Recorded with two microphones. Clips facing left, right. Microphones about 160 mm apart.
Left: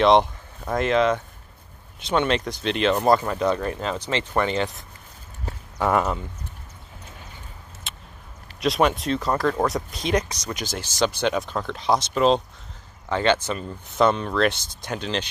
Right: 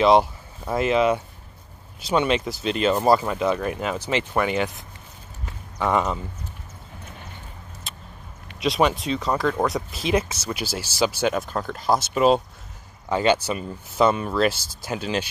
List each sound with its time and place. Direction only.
0.0 s speech: 5° right (ahead or behind)
5.8 s speech: 5° left (ahead or behind)
7.8 s a sound: centre (ahead or behind)
8.5 s speech: centre (ahead or behind)